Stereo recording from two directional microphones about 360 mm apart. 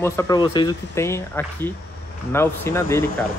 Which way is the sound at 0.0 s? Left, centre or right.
Centre.